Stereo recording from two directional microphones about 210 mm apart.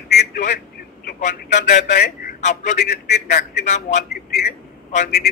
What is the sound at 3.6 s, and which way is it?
Speech, 35° left (ahead or behind).